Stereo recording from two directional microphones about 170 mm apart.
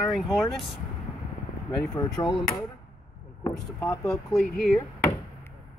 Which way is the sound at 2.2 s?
25° left (ahead or behind).